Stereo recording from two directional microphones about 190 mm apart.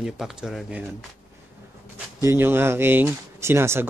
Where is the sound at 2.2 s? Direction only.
10° right (ahead or behind).